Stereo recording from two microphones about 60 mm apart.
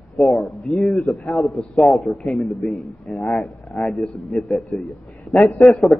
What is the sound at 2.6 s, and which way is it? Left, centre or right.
Speech, centre.